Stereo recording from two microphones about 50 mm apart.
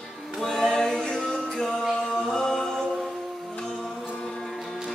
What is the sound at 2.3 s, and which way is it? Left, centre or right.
A capella, centre.